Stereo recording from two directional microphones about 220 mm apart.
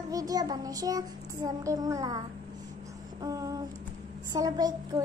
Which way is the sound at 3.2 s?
15° right (ahead or behind).